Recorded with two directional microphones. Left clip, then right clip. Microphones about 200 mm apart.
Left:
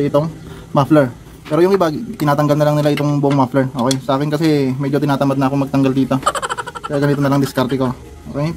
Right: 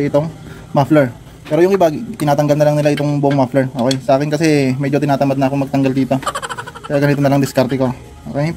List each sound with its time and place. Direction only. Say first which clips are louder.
0.0 s a man's voice: even; 10° right (ahead or behind)
5.0 s speech: right 2 dB; 10° right (ahead or behind)
7.0 s speech: right 2 dB; 20° right (ahead or behind)